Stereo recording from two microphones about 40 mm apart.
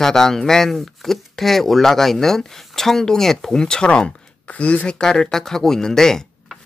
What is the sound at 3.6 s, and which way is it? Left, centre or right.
Speech, left.